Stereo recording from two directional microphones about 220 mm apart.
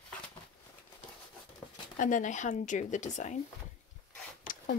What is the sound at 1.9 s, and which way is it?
Speech, 35° left (ahead or behind).